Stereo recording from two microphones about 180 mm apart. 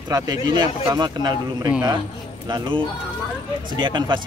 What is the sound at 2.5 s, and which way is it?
Speech, 25° right (ahead or behind).